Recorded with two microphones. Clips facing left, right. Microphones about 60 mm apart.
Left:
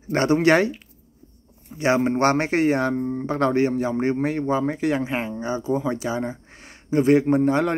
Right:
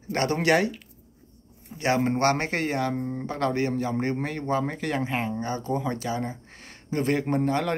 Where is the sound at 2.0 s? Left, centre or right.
Centre.